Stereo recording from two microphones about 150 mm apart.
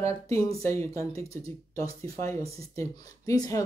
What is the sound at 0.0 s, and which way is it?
Speech, 20° left (ahead or behind).